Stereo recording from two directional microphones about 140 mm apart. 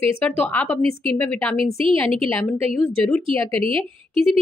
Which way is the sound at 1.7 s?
40° right (ahead or behind).